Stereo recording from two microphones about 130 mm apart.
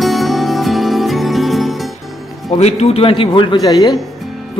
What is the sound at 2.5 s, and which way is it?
A man's voice, 55° left (ahead or behind).